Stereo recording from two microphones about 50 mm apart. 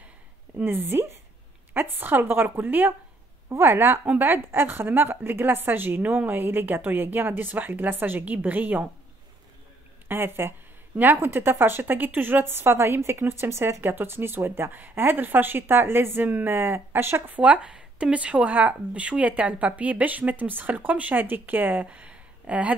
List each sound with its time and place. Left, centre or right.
0.7 s a woman's voice: right
3.4 s a woman's voice: right
3.7 s a woman's voice: right
4.0 s speech: right
4.5 s speech: right
10.0 s a woman's voice: right
17.3 s speech: right
21.8 s a sound: right